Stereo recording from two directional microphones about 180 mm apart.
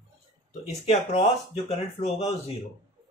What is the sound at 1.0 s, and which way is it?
Speech, 35° left (ahead or behind).